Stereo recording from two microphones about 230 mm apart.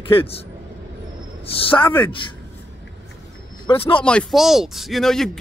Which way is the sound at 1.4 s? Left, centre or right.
Left.